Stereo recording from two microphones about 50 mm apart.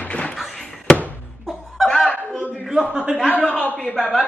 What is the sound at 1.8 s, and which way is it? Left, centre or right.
Snicker, centre.